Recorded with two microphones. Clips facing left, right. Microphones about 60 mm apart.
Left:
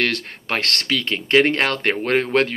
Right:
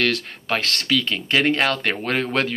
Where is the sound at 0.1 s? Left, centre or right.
Left.